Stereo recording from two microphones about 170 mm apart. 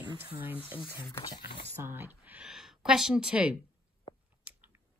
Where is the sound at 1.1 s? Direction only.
25° left (ahead or behind).